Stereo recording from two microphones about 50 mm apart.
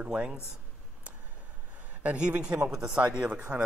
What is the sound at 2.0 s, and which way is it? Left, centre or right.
Speech, right.